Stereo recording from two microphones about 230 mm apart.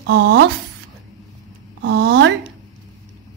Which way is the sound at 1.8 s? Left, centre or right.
Right.